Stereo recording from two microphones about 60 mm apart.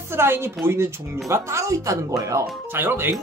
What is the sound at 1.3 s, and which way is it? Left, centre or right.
Speech, right.